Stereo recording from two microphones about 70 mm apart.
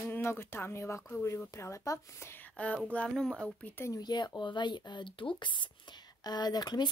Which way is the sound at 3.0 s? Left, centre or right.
Centre.